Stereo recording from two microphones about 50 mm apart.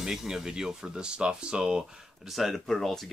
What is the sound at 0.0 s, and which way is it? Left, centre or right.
Speech, centre.